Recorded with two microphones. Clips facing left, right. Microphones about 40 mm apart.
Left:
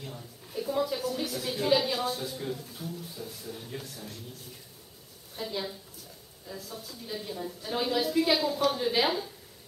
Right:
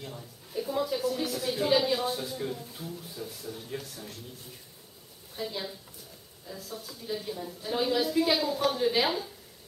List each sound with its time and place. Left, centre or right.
0.0 s a woman's voice: centre
2.8 s speech: centre
3.4 s a woman's voice: centre
5.3 s a woman's voice: centre